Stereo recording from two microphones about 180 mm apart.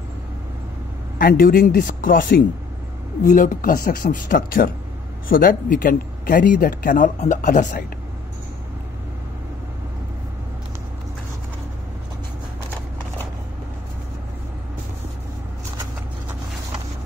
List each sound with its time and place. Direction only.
1.1 s speech: 55° left (ahead or behind)